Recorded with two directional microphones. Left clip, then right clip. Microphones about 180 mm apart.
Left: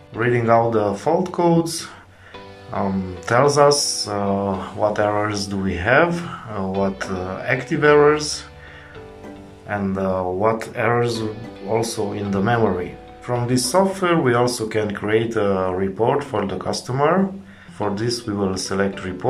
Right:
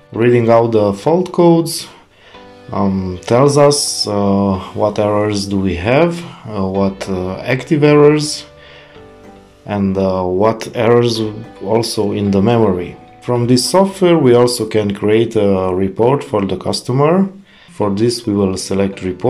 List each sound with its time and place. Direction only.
0.1 s speech: 30° right (ahead or behind)
2.7 s speech: 25° right (ahead or behind)
3.7 s speech: centre (ahead or behind)
4.1 s speech: 25° right (ahead or behind)
9.7 s speech: 25° right (ahead or behind)
13.4 s speech: 20° right (ahead or behind)
16.9 s speech: 35° right (ahead or behind)
17.7 s speech: 25° right (ahead or behind)